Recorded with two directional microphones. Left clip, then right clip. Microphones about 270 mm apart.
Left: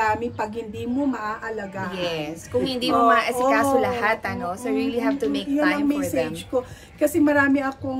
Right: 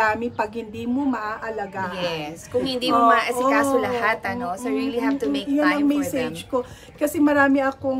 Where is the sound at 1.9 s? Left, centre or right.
Centre.